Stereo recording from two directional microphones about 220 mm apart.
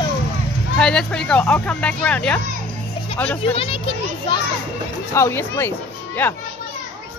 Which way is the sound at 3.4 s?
25° left (ahead or behind).